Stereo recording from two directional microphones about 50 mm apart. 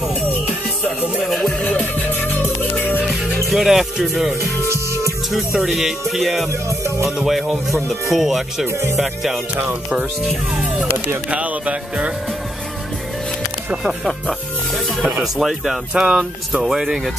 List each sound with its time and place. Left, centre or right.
1.2 s music: centre
1.6 s music: left
3.4 s speech: centre
4.6 s music: right
5.3 s speech: centre
10.5 s speech: right
11.2 s music: right
15.3 s speech: centre
15.9 s speech: centre